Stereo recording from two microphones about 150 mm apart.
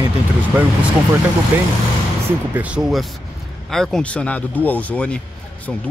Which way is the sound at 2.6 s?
5° right (ahead or behind).